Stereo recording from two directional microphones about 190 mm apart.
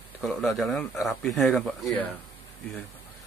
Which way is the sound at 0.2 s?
Centre (ahead or behind).